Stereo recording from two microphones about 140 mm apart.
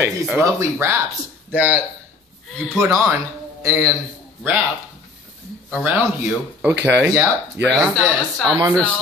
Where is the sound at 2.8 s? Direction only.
20° right (ahead or behind).